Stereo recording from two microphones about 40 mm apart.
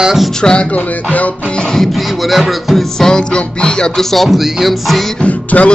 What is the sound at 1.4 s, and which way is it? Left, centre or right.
Music, left.